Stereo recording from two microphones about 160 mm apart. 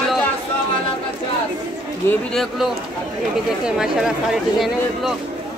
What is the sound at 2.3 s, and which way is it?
Speech, centre (ahead or behind).